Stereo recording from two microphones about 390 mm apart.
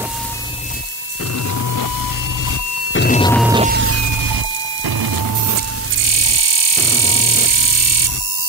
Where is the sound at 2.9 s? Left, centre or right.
Left.